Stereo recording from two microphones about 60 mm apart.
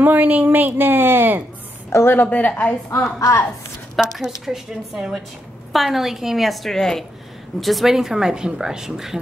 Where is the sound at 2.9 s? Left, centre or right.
Left.